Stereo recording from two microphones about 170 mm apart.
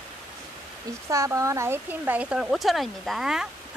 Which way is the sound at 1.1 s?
20° right (ahead or behind).